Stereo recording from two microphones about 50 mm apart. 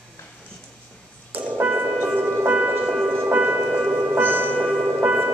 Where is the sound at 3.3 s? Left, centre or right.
Right.